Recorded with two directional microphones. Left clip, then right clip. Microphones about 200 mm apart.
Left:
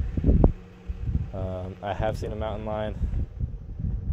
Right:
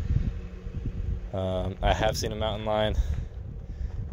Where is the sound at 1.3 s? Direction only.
20° right (ahead or behind).